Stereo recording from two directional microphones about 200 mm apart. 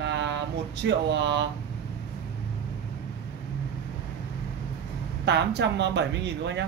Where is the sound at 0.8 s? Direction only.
60° right (ahead or behind).